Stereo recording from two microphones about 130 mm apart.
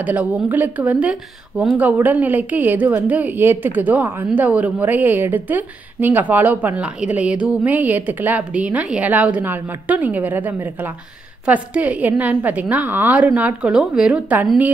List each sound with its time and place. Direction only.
0.0 s a woman's voice: 10° right (ahead or behind)